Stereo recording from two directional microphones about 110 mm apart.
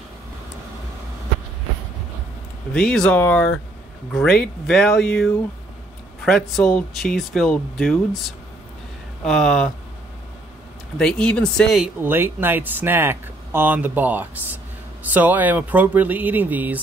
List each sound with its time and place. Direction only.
2.7 s speech: 5° left (ahead or behind)
4.1 s speech: 5° left (ahead or behind)
11.0 s speech: 5° left (ahead or behind)
12.0 s speech: 20° right (ahead or behind)